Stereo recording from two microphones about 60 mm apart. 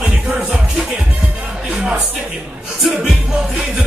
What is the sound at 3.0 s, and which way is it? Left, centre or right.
Music, centre.